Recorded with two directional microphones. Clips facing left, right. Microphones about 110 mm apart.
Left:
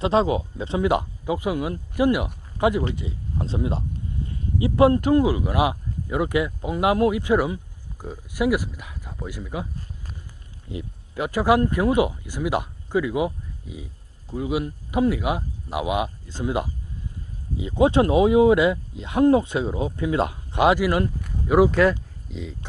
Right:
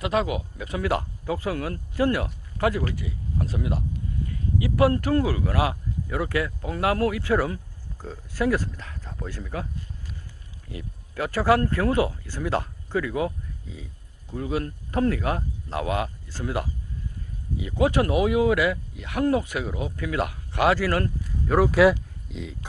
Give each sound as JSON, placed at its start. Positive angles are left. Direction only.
{"t": 0.0, "sound": "speech", "side_deg": 25}
{"t": 10.7, "sound": "speech", "side_deg": 20}
{"t": 21.6, "sound": "speech", "side_deg": -5}